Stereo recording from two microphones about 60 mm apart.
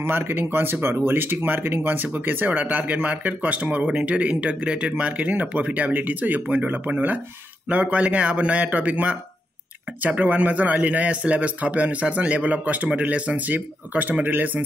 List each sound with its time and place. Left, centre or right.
0.0 s speech: right